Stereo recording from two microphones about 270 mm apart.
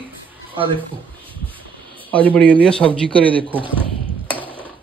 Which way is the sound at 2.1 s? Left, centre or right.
Centre.